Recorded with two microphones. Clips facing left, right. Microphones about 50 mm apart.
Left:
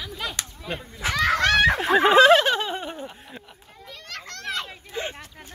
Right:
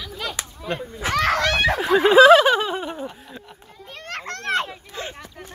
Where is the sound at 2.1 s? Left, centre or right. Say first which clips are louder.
Right 5 dB; centre.